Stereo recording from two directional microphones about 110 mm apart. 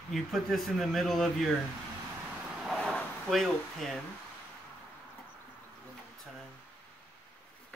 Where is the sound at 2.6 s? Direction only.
5° left (ahead or behind).